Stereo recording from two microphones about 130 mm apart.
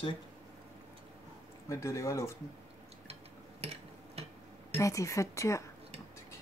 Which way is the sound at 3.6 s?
50° right (ahead or behind).